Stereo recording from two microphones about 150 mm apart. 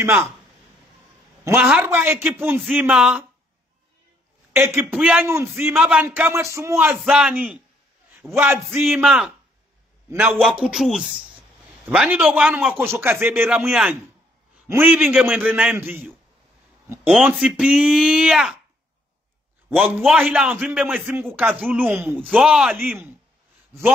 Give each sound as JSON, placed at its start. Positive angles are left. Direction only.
{"t": 0.0, "sound": "speech", "side_deg": -15}
{"t": 1.4, "sound": "speech", "side_deg": -10}
{"t": 4.6, "sound": "speech", "side_deg": -15}
{"t": 7.0, "sound": "speech", "side_deg": -5}
{"t": 8.9, "sound": "speech", "side_deg": -5}
{"t": 19.7, "sound": "speech", "side_deg": 0}